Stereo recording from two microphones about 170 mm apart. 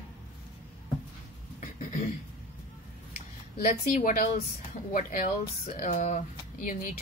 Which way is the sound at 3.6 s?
45° left (ahead or behind).